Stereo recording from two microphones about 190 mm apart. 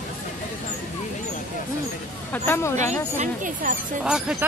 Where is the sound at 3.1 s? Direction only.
45° right (ahead or behind).